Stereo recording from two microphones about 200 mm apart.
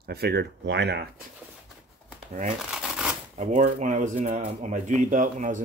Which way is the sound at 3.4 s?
40° right (ahead or behind).